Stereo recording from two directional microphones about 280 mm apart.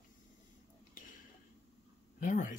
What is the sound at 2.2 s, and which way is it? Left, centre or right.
Speech, left.